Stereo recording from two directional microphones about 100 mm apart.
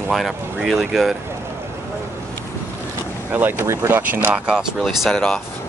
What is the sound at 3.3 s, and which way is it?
Speech, 20° right (ahead or behind).